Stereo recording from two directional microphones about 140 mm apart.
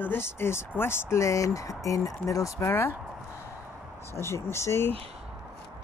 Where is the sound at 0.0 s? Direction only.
15° left (ahead or behind).